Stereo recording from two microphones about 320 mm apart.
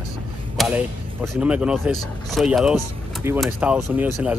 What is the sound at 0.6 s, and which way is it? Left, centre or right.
Speech, centre.